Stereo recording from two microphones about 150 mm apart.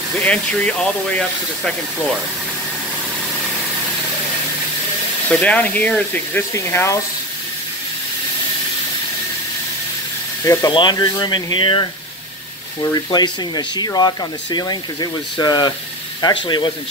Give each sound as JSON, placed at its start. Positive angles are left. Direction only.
{"t": 0.2, "sound": "speech", "side_deg": 10}
{"t": 5.3, "sound": "speech", "side_deg": 10}
{"t": 10.4, "sound": "speech", "side_deg": 20}